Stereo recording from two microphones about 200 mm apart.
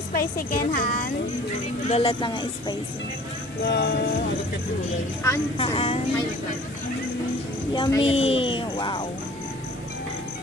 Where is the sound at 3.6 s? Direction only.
55° left (ahead or behind).